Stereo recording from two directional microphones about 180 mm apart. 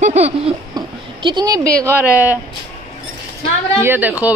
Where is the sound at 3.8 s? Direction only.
10° right (ahead or behind).